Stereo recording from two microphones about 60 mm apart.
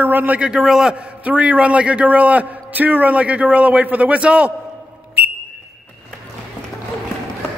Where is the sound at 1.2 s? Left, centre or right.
Right.